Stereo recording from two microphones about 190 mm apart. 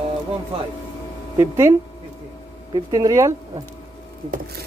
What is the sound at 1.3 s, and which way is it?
Speech, 15° right (ahead or behind).